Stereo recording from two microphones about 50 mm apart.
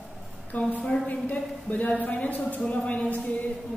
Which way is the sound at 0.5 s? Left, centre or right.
Left.